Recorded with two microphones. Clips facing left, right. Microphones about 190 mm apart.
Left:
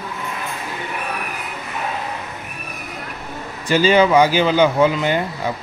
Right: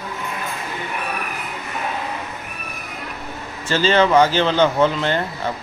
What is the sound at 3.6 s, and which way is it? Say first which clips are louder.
Speech: left 3 dB; 15° left (ahead or behind).